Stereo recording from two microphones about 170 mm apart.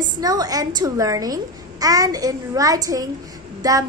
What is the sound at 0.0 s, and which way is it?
A woman's voice, 20° right (ahead or behind).